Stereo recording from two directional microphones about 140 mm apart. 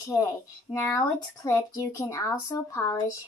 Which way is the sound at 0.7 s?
20° left (ahead or behind).